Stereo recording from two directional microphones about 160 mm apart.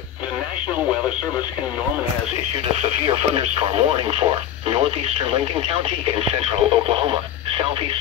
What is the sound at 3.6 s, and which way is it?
Speech, 35° right (ahead or behind).